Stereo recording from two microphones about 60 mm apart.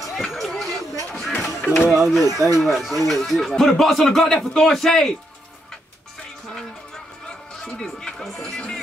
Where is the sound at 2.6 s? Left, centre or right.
Centre.